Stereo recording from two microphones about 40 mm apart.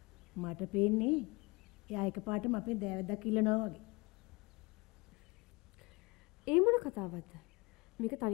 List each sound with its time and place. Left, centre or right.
0.3 s a woman's voice: centre
6.4 s a sound: right
8.0 s speech: centre